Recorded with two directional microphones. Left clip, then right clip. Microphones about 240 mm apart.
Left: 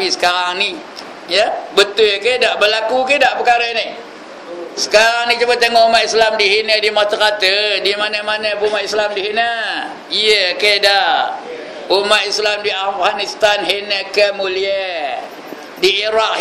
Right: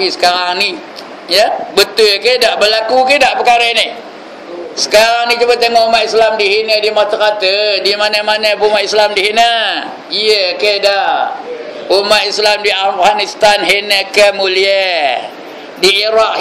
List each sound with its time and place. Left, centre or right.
0.2 s a man's voice: centre
10.1 s speech: centre
11.9 s a man's voice: centre; by 15.1 s right
15.8 s a man's voice: centre